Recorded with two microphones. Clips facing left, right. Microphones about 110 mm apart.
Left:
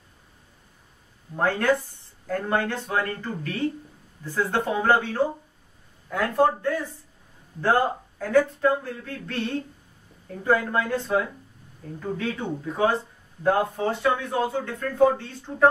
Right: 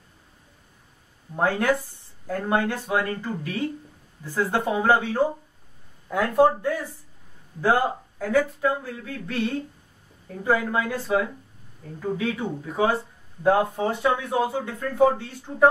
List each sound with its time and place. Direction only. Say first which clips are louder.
1.3 s speech: even; 15° right (ahead or behind)